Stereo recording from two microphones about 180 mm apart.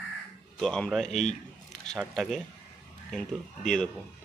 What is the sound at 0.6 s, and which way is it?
Speech, 5° left (ahead or behind).